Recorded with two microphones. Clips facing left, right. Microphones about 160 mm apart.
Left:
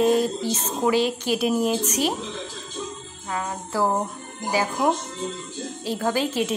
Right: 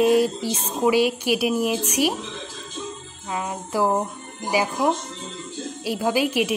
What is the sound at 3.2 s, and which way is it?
Speech, 15° right (ahead or behind).